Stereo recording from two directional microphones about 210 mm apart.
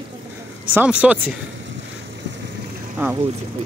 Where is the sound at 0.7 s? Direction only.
5° right (ahead or behind).